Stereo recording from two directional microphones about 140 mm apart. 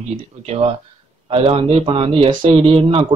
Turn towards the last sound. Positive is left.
turn(degrees=-40)  # may be behind; listen again after turning